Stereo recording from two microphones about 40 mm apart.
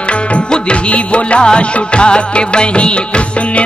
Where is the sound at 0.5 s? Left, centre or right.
Left.